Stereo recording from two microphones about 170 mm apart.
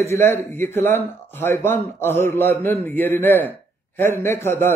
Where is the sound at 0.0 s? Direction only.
15° left (ahead or behind).